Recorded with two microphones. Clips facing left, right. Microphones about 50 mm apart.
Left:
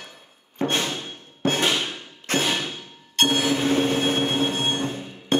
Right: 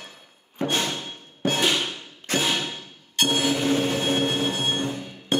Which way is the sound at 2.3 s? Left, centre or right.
Left.